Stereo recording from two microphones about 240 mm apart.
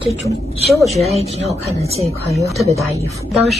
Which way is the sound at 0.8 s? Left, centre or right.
Centre.